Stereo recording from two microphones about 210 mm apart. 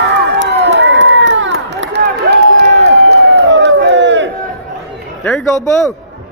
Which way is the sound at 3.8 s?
60° right (ahead or behind).